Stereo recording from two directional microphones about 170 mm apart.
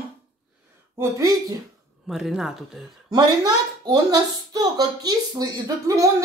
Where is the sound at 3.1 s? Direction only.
25° right (ahead or behind).